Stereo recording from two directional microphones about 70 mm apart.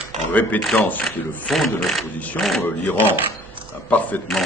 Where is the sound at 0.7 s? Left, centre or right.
Left.